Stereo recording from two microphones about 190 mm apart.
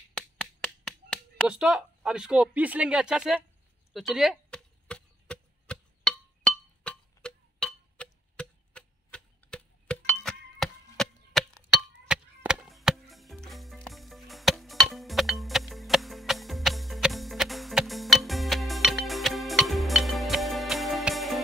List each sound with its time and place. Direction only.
0.1 s a sound: 5° left (ahead or behind)
1.5 s speech: 5° right (ahead or behind)
3.9 s chop: centre (ahead or behind)